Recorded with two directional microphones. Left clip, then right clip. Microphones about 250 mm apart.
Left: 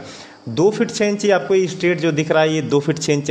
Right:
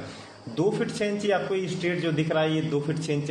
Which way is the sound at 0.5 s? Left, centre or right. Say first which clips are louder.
Left 9 dB; left.